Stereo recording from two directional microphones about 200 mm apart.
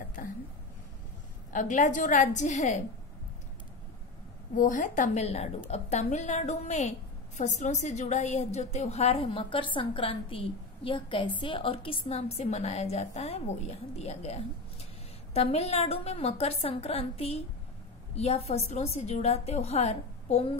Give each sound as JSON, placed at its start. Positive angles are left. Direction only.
{"t": 0.2, "sound": "a sound", "side_deg": 40}
{"t": 1.5, "sound": "a woman's voice", "side_deg": 40}
{"t": 4.6, "sound": "a woman's voice", "side_deg": 40}